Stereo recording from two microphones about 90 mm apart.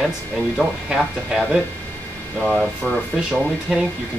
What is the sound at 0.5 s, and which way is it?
Speech, 5° right (ahead or behind).